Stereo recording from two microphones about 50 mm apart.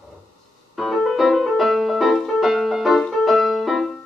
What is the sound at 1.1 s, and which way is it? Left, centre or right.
Music, centre.